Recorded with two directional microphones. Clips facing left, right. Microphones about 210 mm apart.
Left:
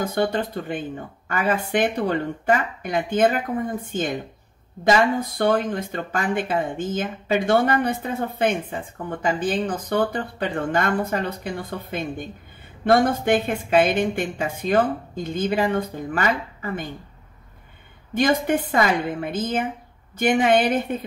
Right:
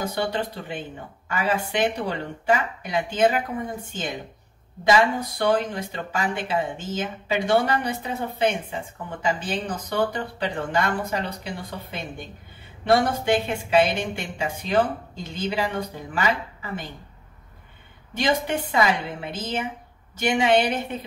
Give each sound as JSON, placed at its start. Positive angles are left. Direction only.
{"t": 0.0, "sound": "speech", "side_deg": 55}
{"t": 18.1, "sound": "speech", "side_deg": 50}